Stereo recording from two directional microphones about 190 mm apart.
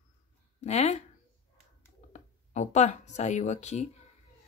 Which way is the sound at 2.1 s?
40° left (ahead or behind).